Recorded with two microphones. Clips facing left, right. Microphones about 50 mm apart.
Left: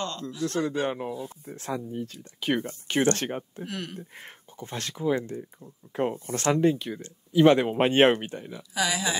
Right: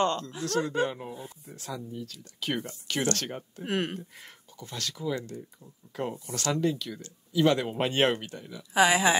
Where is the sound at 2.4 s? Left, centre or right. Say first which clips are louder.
Left 5 dB; centre.